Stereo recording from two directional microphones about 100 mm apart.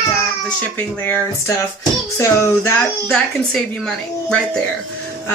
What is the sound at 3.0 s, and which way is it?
A woman's voice, 5° left (ahead or behind).